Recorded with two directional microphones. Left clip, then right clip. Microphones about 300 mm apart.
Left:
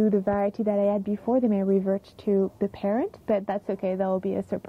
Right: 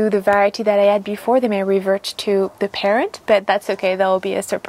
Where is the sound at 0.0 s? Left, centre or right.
Centre.